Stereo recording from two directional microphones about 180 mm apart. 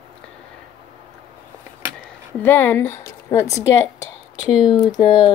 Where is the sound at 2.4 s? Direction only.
10° left (ahead or behind).